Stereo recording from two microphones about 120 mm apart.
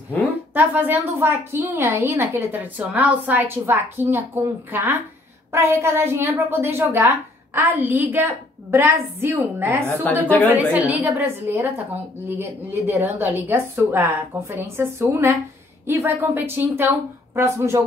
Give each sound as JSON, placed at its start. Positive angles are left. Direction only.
{"t": 0.6, "sound": "a woman's voice", "side_deg": -15}